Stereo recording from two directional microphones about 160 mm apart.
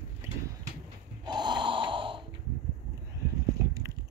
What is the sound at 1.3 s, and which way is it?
Gasp, 30° right (ahead or behind).